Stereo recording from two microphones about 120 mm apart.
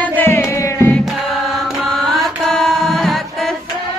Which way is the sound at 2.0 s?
Centre (ahead or behind).